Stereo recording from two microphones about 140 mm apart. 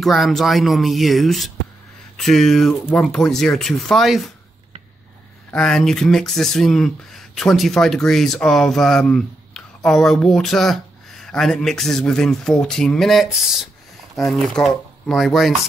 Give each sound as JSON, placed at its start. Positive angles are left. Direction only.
{"t": 0.0, "sound": "speech", "side_deg": 0}
{"t": 5.5, "sound": "speech", "side_deg": 5}